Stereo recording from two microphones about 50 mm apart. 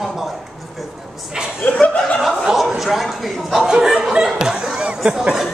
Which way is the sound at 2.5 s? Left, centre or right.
Centre.